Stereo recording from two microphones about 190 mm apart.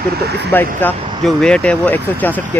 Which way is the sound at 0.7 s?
5° left (ahead or behind).